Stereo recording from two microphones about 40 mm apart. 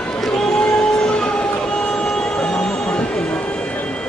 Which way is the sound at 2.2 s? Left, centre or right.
Left.